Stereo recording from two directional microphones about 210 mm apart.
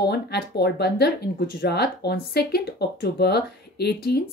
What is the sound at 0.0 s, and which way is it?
Speech, 50° left (ahead or behind).